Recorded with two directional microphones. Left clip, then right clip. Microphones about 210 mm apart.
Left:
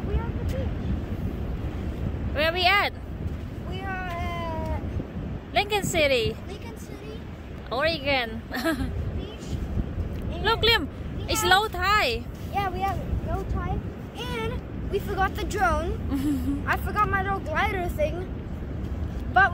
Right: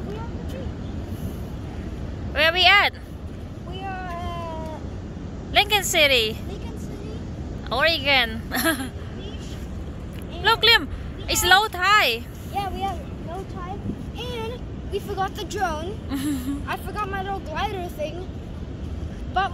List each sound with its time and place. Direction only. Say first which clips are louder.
2.3 s speech: right 5 dB; centre (ahead or behind)
4.2 s cat: even; 15° left (ahead or behind)
5.5 s speech: right 5 dB; 5° left (ahead or behind)
7.7 s speech: right 5 dB; 5° left (ahead or behind)
10.4 s speech: right 5 dB; 5° left (ahead or behind)
14.2 s vehicle: even; 15° left (ahead or behind)
15.1 s a woman's voice: left 1 dB; 25° left (ahead or behind)
19.4 s speech: left 4 dB; 20° left (ahead or behind)